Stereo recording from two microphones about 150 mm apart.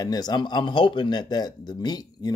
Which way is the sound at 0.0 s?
25° left (ahead or behind).